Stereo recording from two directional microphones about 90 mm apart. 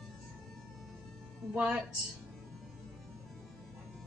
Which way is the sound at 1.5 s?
15° right (ahead or behind).